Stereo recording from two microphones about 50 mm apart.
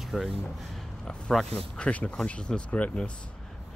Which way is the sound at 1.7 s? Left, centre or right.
Left.